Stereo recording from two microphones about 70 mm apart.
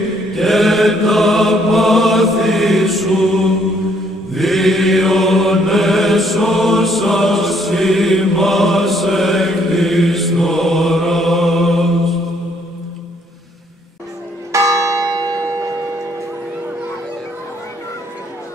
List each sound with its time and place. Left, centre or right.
0.3 s mantra: centre
4.3 s chant: centre
14.5 s church bell: right
15.0 s church bell: right